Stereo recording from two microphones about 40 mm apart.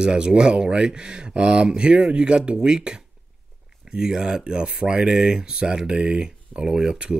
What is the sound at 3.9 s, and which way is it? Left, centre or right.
Speech, centre.